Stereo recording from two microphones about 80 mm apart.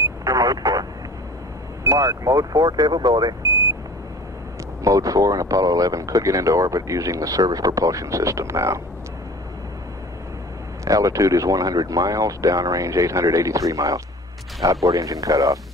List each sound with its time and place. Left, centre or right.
0.2 s vehicle: right
1.9 s speech: right
4.8 s speech: right
10.9 s speech: right